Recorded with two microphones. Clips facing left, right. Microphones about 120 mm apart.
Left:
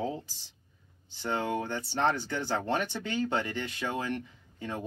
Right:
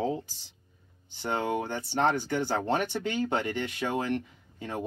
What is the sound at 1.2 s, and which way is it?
Speech, 20° right (ahead or behind).